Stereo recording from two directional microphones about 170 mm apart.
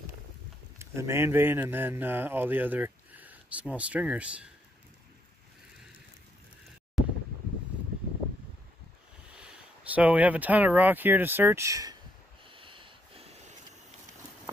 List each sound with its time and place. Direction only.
0.7 s speech: 15° right (ahead or behind)
7.0 s wind: centre (ahead or behind)
9.3 s speech: 5° right (ahead or behind)
12.4 s sniff: 30° right (ahead or behind)